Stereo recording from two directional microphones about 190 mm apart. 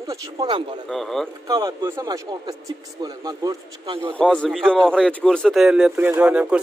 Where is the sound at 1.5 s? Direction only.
20° right (ahead or behind).